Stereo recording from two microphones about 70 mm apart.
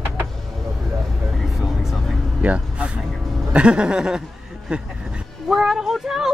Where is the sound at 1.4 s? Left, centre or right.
Centre.